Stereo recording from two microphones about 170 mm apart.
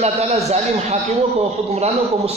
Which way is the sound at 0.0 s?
40° right (ahead or behind).